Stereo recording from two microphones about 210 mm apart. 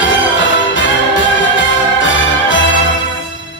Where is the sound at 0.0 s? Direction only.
60° left (ahead or behind).